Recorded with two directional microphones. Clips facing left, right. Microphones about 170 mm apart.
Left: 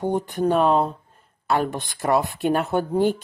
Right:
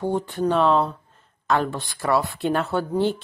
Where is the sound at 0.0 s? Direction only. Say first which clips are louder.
Left 1 dB; 15° left (ahead or behind).